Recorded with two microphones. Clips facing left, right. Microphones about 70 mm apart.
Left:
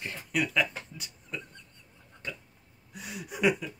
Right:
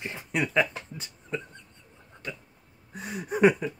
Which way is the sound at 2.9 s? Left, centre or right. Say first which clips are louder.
Right 7 dB; right.